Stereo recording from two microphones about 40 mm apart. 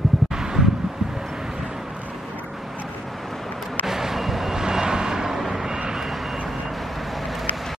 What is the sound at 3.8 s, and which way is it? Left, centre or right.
Vehicle, centre.